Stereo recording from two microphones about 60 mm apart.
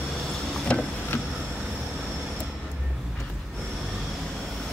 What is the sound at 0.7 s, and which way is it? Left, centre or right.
Vehicle, centre.